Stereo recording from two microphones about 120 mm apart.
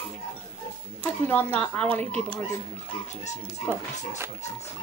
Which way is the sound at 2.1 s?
55° right (ahead or behind).